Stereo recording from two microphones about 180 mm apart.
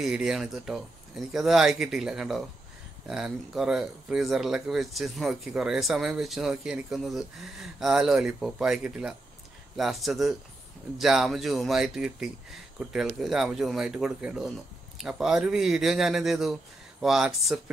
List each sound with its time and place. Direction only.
0.0 s speech: centre (ahead or behind)